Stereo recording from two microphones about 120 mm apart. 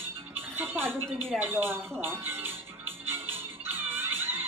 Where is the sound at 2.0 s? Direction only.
20° right (ahead or behind).